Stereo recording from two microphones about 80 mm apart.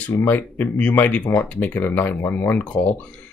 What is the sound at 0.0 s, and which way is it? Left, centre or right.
Speech, left.